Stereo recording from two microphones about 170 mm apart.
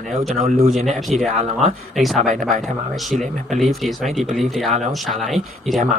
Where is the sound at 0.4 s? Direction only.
50° right (ahead or behind).